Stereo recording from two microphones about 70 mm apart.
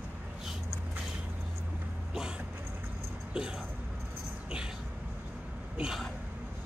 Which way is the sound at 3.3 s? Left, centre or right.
Centre.